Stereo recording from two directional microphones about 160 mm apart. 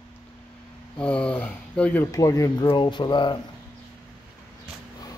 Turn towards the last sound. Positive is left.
turn(degrees=30)  # may be behind; listen again after turning